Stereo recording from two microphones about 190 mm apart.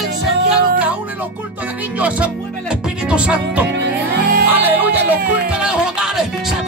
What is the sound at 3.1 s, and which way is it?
Speech, 5° right (ahead or behind).